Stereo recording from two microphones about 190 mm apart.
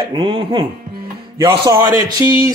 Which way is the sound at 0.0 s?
25° right (ahead or behind).